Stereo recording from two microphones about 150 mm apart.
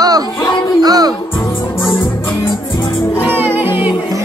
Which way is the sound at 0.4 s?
30° left (ahead or behind).